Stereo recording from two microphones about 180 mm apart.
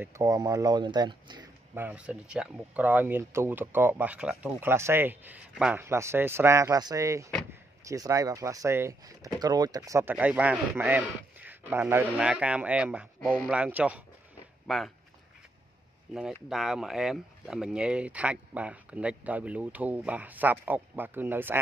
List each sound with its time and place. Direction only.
0.0 s speech: 15° right (ahead or behind)
1.8 s speech: 5° right (ahead or behind)
13.2 s speech: 5° left (ahead or behind)
13.5 s speech: 10° right (ahead or behind)
16.1 s speech: 5° right (ahead or behind)